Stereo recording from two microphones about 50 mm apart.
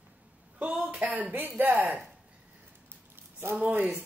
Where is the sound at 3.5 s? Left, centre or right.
Right.